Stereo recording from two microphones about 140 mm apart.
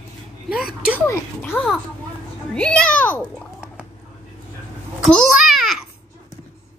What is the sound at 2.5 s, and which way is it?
Speech, 5° left (ahead or behind).